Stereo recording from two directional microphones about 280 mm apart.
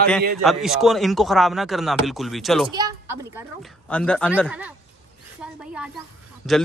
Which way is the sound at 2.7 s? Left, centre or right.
Centre.